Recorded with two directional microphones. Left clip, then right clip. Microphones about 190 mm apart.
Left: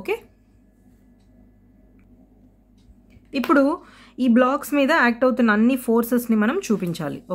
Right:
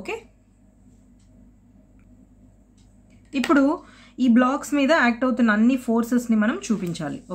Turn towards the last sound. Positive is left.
turn(degrees=40)  # may be behind; listen again after turning